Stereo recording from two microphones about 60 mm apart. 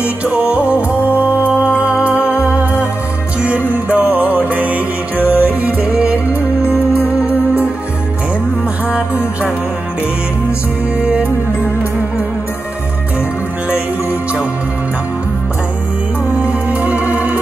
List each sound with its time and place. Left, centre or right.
0.0 s music: right
5.2 s music: left
5.6 s music: right
8.9 s music: right
11.0 s music: centre
16.4 s music: right